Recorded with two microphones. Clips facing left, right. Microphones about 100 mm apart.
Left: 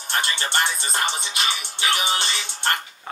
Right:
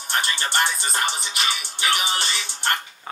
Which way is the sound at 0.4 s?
20° left (ahead or behind).